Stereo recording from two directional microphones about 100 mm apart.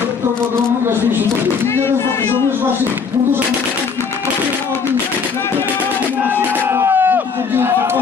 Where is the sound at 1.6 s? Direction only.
25° left (ahead or behind).